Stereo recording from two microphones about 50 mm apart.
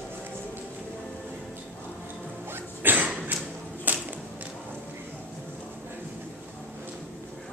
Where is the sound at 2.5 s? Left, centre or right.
Right.